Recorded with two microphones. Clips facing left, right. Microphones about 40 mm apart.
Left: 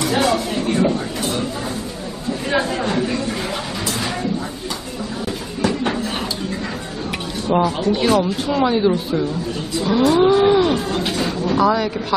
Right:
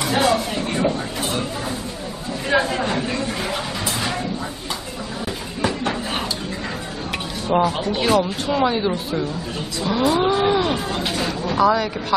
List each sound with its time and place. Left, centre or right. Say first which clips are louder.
0.0 s vehicle: left 1 dB; centre
2.5 s chatter: right 1 dB; centre
7.4 s speech: left 2 dB; centre